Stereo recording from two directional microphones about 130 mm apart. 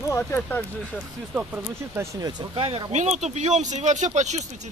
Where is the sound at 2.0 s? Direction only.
30° right (ahead or behind).